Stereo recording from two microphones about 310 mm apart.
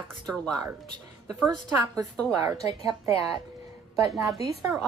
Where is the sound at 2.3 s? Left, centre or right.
Centre.